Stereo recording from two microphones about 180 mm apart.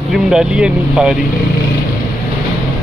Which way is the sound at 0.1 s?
5° right (ahead or behind).